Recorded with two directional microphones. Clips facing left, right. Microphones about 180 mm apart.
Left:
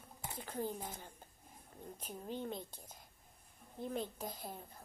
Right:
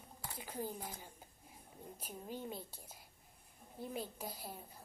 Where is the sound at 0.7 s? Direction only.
25° left (ahead or behind).